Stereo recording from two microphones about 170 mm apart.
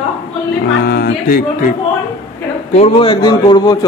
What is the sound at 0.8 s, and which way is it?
Music, 65° left (ahead or behind).